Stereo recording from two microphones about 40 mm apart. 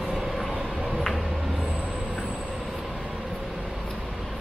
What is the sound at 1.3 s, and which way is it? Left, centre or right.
Vehicle, centre.